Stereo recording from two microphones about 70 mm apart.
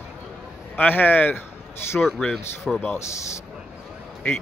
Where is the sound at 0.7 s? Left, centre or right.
Left.